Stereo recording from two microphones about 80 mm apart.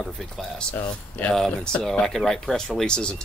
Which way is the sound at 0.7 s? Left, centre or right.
Left.